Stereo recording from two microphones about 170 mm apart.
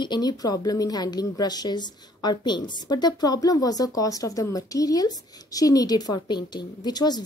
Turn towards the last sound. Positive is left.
turn(degrees=25)  # may be behind; listen again after turning